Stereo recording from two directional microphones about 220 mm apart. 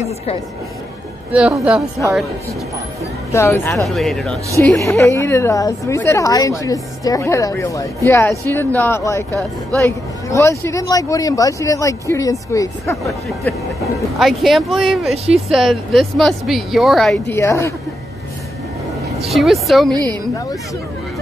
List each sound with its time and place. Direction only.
1.3 s speech: 5° right (ahead or behind)
3.3 s a woman's voice: 15° left (ahead or behind)
4.6 s a woman's voice: 10° left (ahead or behind)
9.3 s speech: 15° right (ahead or behind)
9.8 s a woman's voice: 15° left (ahead or behind)
14.1 s speech: centre (ahead or behind)
17.4 s a woman's voice: 15° left (ahead or behind)
19.2 s speech: centre (ahead or behind)
19.9 s speech: 20° right (ahead or behind)